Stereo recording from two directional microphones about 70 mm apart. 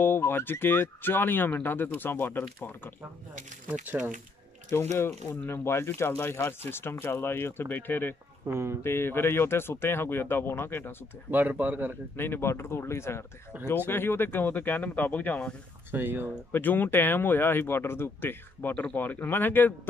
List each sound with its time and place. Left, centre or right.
0.0 s speech: left
3.8 s speech: centre
4.6 s speech: left
8.5 s speech: right
8.8 s speech: left
11.2 s speech: right
12.2 s speech: left
15.9 s speech: right
16.5 s speech: left